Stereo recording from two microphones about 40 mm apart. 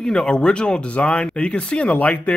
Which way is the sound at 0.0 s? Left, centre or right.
Centre.